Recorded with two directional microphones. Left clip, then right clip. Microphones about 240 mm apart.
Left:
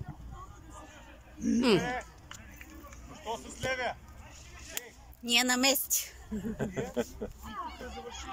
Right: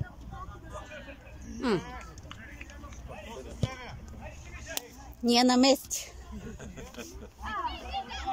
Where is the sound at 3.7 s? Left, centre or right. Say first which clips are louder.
Left 10 dB; left.